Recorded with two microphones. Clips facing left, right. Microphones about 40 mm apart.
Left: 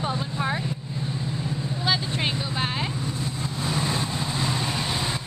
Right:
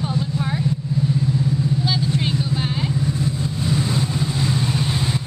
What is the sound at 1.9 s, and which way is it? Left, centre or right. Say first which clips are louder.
Vehicle: right 3 dB; left.